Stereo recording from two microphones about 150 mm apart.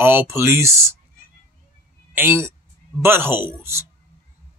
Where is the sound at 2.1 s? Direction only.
15° right (ahead or behind).